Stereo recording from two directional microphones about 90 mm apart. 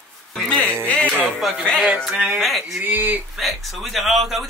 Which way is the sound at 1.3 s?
Centre (ahead or behind).